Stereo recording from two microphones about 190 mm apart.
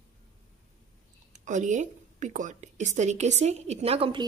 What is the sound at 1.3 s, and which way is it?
A woman's voice, 40° right (ahead or behind).